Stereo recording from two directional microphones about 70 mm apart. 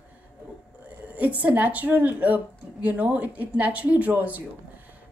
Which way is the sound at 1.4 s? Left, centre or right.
Right.